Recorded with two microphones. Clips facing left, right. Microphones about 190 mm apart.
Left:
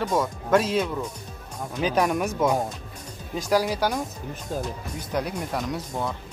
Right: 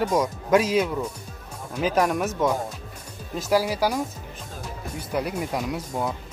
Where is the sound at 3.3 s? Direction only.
5° right (ahead or behind).